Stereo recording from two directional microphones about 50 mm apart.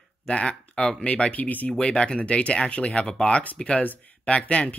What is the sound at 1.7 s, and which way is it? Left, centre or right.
Speech, centre.